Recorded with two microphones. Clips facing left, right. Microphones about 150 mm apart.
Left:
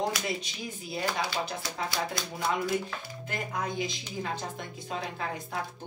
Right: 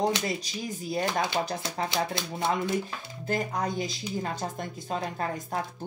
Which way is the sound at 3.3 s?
40° right (ahead or behind).